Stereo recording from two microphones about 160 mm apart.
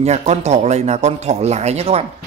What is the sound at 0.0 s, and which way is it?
Speech, 45° right (ahead or behind).